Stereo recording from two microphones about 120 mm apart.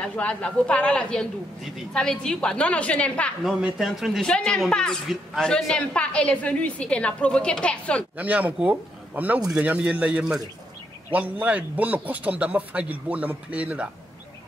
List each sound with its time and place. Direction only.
0.0 s a woman's voice: 10° left (ahead or behind)
3.4 s a man's voice: centre (ahead or behind)
8.2 s a man's voice: 15° right (ahead or behind)